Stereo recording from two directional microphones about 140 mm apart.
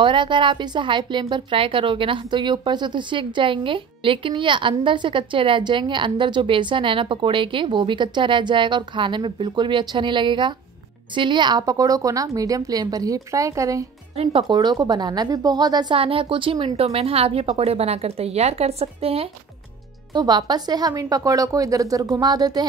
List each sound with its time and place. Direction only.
0.0 s a woman's voice: 35° right (ahead or behind)
14.1 s a woman's voice: 45° right (ahead or behind)
14.5 s a woman's voice: 30° right (ahead or behind)
20.1 s a woman's voice: 30° right (ahead or behind)